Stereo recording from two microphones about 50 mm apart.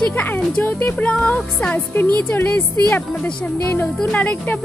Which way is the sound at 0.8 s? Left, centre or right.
Left.